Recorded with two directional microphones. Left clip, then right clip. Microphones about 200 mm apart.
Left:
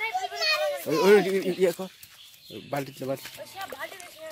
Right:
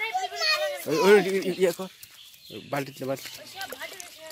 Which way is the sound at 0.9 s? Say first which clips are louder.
Right 1 dB; centre (ahead or behind).